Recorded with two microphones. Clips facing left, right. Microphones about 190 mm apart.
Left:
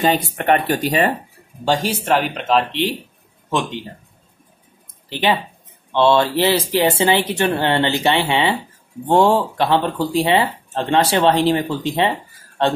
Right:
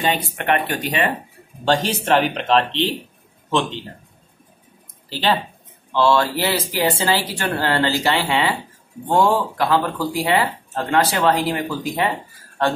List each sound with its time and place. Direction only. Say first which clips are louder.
0.0 s speech: left 4 dB; 40° left (ahead or behind)
1.6 s speech: even; 10° left (ahead or behind)
5.1 s speech: left 1 dB; 15° left (ahead or behind)